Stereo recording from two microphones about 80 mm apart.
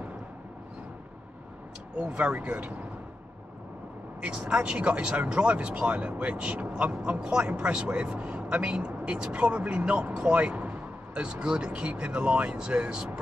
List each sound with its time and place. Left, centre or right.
2.0 s speech: centre
4.2 s speech: centre